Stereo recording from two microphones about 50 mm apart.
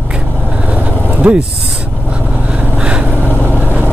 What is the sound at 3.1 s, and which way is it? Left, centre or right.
Vehicle, right.